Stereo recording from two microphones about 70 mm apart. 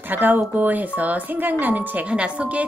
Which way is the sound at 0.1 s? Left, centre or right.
Right.